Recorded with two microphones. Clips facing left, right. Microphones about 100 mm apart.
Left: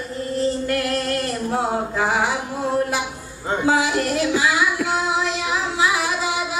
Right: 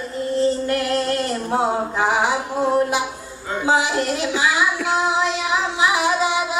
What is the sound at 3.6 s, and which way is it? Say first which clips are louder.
Music: right 1 dB; 25° right (ahead or behind).